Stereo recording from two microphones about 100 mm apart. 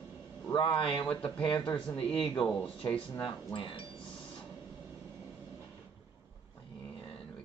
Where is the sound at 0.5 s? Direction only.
55° left (ahead or behind).